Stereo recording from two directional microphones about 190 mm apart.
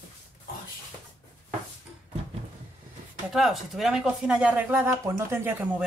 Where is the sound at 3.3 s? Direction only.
Centre (ahead or behind).